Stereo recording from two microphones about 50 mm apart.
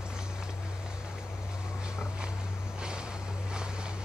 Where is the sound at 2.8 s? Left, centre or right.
Centre.